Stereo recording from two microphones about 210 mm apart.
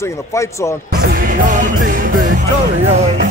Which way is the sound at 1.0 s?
45° right (ahead or behind).